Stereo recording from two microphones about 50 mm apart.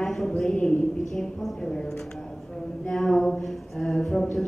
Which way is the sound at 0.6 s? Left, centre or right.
Centre.